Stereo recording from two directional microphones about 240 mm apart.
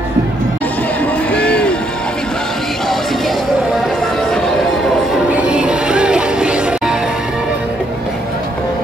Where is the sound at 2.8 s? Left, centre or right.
Centre.